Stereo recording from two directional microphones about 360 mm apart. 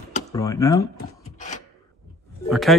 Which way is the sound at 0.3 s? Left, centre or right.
Centre.